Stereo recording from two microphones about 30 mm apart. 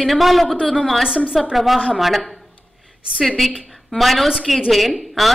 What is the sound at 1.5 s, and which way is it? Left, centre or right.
Speech, centre.